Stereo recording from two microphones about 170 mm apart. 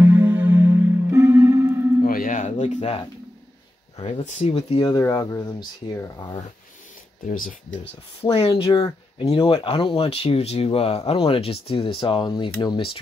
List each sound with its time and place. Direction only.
0.0 s music: 10° right (ahead or behind)
2.0 s music: 55° left (ahead or behind)
4.0 s speech: 40° left (ahead or behind)
4.8 s speech: 20° left (ahead or behind)
7.2 s speech: 55° left (ahead or behind)
8.2 s speech: 35° left (ahead or behind)